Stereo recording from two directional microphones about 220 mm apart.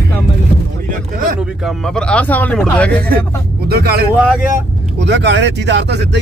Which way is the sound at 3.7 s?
45° right (ahead or behind).